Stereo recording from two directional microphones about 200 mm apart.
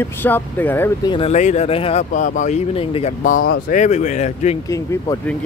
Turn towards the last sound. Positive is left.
turn(degrees=15)  # may be behind; listen again after turning